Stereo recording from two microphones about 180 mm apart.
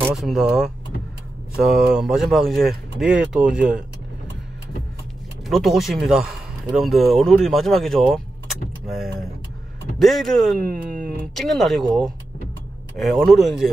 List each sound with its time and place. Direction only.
0.1 s speech: centre (ahead or behind)
5.5 s speech: centre (ahead or behind)
10.6 s speech: 50° right (ahead or behind)
11.3 s speech: centre (ahead or behind)
12.9 s speech: centre (ahead or behind)